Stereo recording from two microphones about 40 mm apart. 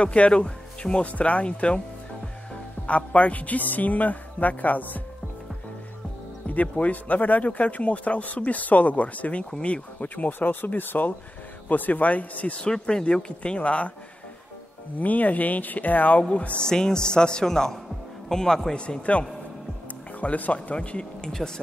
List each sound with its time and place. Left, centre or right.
0.0 s a man's voice: left
2.9 s speech: left
6.5 s a man's voice: left
10.0 s a man's voice: left
12.6 s speech: centre
15.0 s speech: left
16.2 s a man's voice: left
16.6 s a man's voice: centre
19.1 s a man's voice: left
20.7 s speech: left